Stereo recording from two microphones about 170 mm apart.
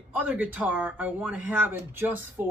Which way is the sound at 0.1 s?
10° right (ahead or behind).